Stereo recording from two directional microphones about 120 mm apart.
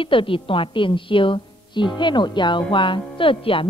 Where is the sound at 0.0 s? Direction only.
45° left (ahead or behind).